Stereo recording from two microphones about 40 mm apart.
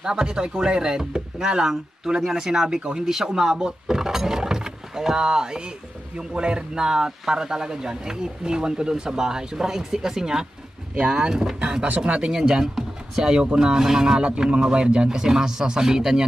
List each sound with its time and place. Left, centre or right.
0.0 s speech: centre
15.0 s speech: centre